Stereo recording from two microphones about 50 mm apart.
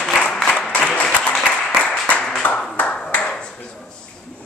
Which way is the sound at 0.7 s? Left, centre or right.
Left.